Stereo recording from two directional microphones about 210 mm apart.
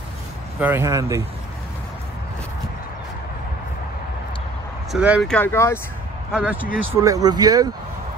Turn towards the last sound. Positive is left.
turn(degrees=-20)  # may be behind; listen again after turning